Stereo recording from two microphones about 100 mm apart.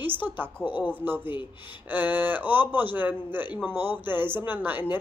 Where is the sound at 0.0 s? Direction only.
20° right (ahead or behind).